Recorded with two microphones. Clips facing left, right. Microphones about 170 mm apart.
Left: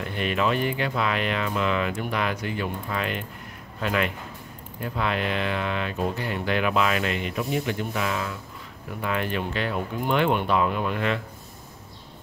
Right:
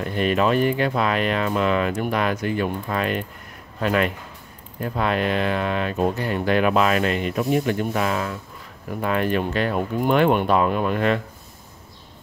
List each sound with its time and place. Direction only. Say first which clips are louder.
0.0 s speech: right 5 dB; 40° right (ahead or behind)